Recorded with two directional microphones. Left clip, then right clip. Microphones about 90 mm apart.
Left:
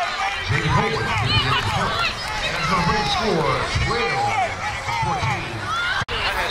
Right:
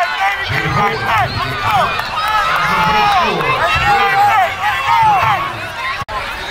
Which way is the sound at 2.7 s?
35° right (ahead or behind).